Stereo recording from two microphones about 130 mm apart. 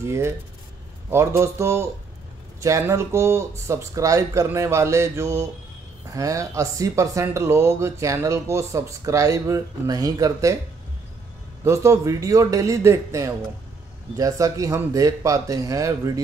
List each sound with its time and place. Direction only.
0.0 s speech: 20° right (ahead or behind)
11.6 s speech: 20° right (ahead or behind)